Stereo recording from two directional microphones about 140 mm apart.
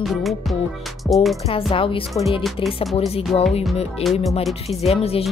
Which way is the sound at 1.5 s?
40° left (ahead or behind).